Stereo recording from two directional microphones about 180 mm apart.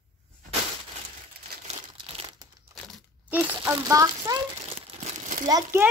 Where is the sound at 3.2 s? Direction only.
10° right (ahead or behind).